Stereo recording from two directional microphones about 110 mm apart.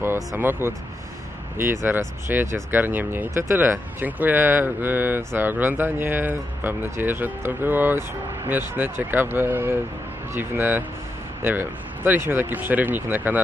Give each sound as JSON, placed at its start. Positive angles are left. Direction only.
{"t": 0.0, "sound": "speech", "side_deg": -20}